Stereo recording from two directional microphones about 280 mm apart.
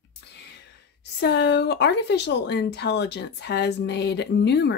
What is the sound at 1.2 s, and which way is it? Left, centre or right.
Speech, left.